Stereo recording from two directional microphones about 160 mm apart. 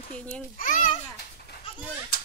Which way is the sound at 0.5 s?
55° left (ahead or behind).